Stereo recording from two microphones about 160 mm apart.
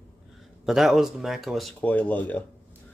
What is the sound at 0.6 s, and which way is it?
Speech, 5° right (ahead or behind).